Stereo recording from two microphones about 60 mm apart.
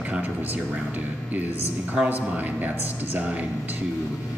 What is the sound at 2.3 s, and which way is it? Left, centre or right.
Speech, right.